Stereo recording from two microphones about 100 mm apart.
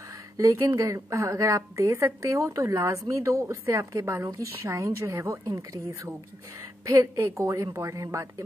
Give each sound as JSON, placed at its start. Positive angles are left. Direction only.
{"t": 0.4, "sound": "a woman's voice", "side_deg": -35}